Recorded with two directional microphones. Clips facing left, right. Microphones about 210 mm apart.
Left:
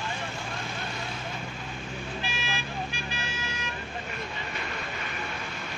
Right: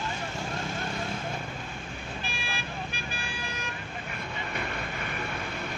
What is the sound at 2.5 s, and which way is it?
Vehicle, 55° right (ahead or behind).